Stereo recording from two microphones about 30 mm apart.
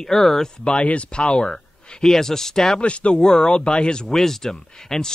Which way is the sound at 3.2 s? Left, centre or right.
Left.